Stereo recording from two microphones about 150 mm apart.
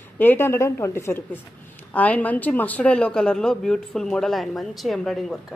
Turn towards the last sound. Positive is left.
turn(degrees=0)  # may be behind; listen again after turning